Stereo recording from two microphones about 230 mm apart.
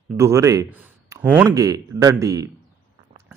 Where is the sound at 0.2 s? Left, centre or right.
Centre.